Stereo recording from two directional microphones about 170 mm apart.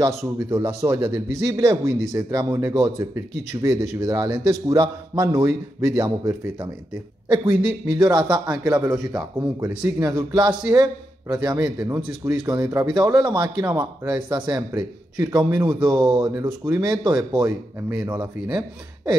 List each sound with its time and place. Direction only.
0.5 s a man's voice: 20° right (ahead or behind)
8.0 s a man's voice: 25° right (ahead or behind); by 10.0 s 10° right (ahead or behind)
10.0 s a man's voice: 25° right (ahead or behind)
11.3 s speech: 10° right (ahead or behind)
13.7 s speech: 10° right (ahead or behind)
14.7 s a man's voice: 25° right (ahead or behind)